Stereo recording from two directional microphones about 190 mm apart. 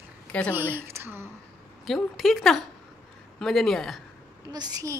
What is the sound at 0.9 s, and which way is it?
Speech, 15° right (ahead or behind).